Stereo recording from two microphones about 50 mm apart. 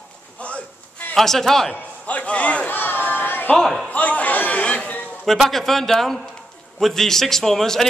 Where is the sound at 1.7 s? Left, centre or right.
Left.